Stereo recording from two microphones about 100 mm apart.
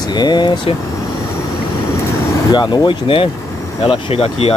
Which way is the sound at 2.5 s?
45° left (ahead or behind).